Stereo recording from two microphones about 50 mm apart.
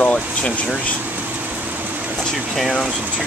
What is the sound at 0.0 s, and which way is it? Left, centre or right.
Vehicle, left.